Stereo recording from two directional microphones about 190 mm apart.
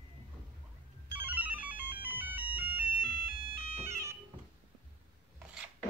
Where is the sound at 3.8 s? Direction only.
15° right (ahead or behind).